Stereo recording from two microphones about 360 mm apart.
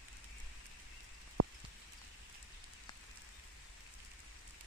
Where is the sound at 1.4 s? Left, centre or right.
Right.